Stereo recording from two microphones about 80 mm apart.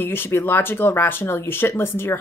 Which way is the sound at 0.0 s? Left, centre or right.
Left.